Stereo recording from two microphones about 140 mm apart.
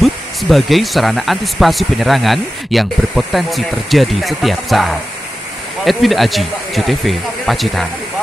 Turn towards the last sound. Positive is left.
turn(degrees=0)  # may be behind; listen again after turning